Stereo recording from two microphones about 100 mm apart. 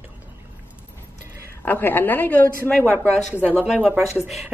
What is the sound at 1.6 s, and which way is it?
A woman's voice, 20° left (ahead or behind).